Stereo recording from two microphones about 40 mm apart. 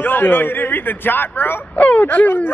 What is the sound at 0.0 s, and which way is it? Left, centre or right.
Speech, left.